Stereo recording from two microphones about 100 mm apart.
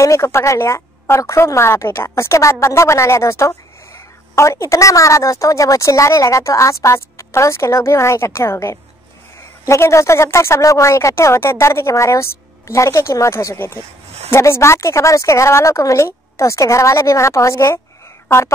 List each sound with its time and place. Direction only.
0.0 s speech: 30° left (ahead or behind)